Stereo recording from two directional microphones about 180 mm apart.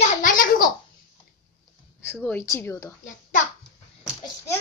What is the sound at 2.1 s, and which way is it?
Speech, 10° left (ahead or behind).